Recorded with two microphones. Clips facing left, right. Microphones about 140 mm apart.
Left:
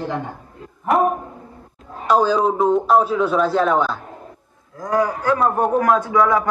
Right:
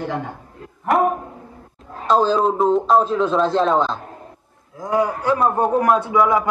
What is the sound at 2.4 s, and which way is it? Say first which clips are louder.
A man's voice: even; centre (ahead or behind).